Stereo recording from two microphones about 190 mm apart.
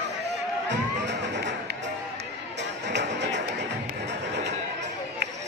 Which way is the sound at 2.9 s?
65° right (ahead or behind).